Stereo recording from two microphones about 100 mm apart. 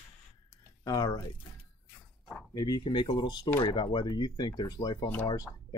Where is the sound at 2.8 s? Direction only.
50° left (ahead or behind).